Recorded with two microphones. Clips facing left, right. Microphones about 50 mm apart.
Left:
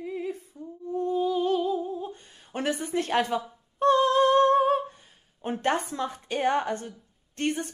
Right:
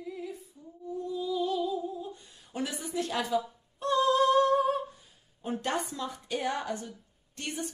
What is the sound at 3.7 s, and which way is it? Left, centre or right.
Singing, left.